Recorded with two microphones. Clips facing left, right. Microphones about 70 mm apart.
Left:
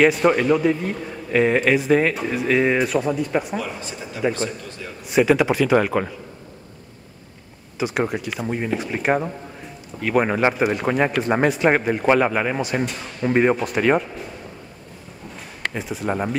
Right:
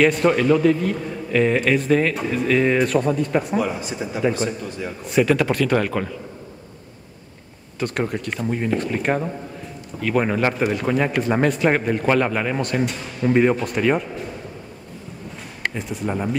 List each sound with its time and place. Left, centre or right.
0.0 s a man's voice: centre
3.5 s speech: centre
5.0 s speech: centre
7.8 s speech: centre
10.5 s speech: centre
13.3 s speech: centre
13.6 s speech: centre
15.8 s speech: centre
16.1 s speech: centre